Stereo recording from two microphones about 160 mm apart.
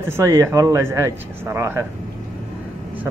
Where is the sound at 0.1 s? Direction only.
15° right (ahead or behind).